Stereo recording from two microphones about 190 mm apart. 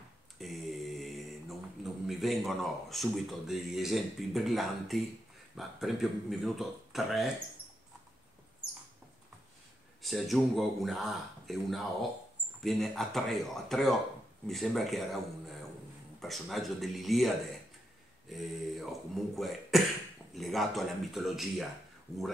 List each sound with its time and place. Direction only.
0.4 s mantra: centre (ahead or behind)
5.6 s speech: centre (ahead or behind)
10.0 s speech: centre (ahead or behind)
18.3 s speech: centre (ahead or behind)
22.1 s speech: 15° left (ahead or behind)